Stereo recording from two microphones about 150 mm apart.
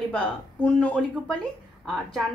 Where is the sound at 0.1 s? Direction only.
10° left (ahead or behind).